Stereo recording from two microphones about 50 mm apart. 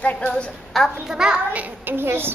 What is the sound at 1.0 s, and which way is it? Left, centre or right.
Speech, centre.